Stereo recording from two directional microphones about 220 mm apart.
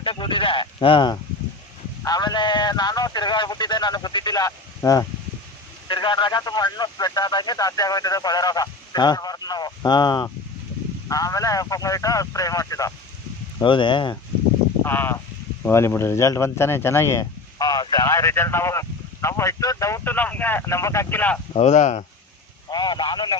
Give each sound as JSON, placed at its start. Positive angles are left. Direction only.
{"t": 0.0, "sound": "speech", "side_deg": 25}
{"t": 14.8, "sound": "speech", "side_deg": 10}
{"t": 21.5, "sound": "speech", "side_deg": 30}
{"t": 22.7, "sound": "speech", "side_deg": 20}